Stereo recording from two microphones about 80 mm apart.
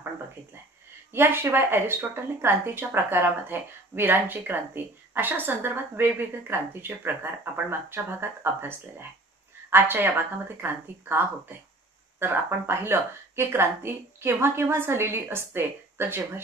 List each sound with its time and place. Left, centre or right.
1.1 s a woman's voice: right